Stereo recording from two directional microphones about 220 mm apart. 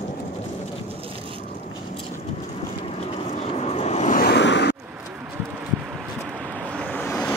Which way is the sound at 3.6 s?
30° left (ahead or behind).